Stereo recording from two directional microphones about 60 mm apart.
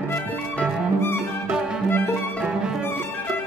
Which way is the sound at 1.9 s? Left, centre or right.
Left.